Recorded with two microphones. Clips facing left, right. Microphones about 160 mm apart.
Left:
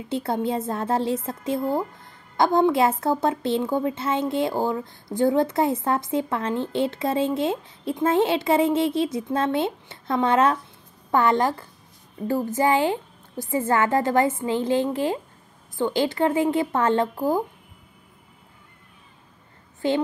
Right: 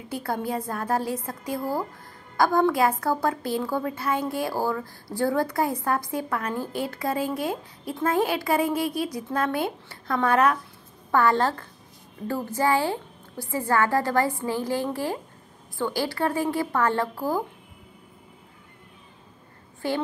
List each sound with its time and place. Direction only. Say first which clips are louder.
0.1 s a woman's voice: left 4 dB; 25° left (ahead or behind)
19.8 s a woman's voice: left 5 dB; 20° left (ahead or behind)